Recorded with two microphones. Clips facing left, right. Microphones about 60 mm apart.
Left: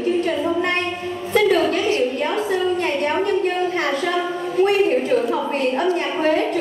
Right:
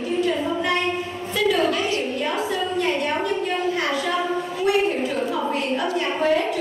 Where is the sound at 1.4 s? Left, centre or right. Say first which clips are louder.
Left 4 dB; left.